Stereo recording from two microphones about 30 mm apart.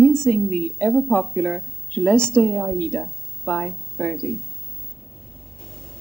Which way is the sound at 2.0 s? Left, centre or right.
Left.